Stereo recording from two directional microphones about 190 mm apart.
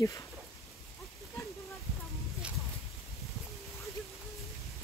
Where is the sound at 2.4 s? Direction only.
5° right (ahead or behind).